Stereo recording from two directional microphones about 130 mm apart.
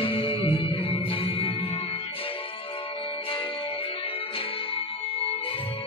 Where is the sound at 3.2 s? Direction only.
45° left (ahead or behind).